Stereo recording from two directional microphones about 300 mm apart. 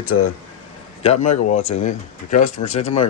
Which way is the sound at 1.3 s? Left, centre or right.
Left.